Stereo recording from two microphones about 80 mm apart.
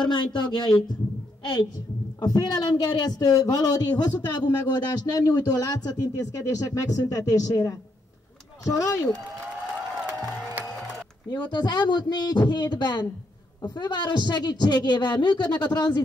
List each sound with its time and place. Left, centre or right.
0.0 s a woman's voice: left
2.1 s a woman's voice: left
11.2 s a man's voice: left